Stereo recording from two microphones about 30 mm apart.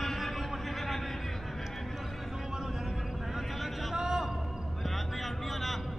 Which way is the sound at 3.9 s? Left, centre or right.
Centre.